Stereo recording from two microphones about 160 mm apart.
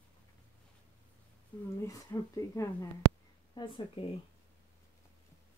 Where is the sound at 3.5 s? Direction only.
30° left (ahead or behind).